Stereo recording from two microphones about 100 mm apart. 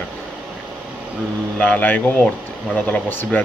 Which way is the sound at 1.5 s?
15° left (ahead or behind).